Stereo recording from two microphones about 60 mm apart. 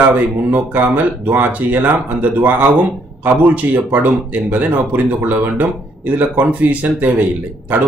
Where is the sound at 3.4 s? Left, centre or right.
Right.